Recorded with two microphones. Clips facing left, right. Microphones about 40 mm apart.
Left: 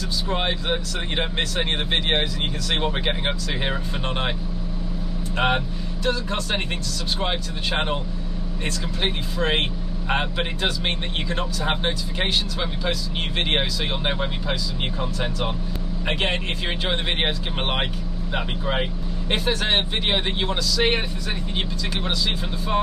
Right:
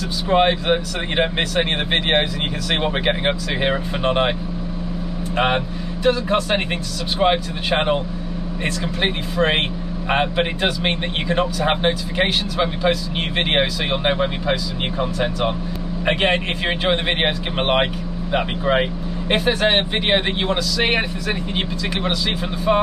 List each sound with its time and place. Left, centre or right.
0.3 s speech: right
5.3 s speech: centre